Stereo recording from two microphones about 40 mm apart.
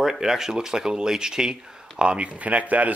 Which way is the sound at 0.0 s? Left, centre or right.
Centre.